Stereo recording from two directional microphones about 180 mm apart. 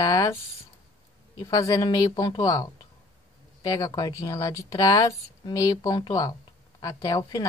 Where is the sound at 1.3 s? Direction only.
20° left (ahead or behind).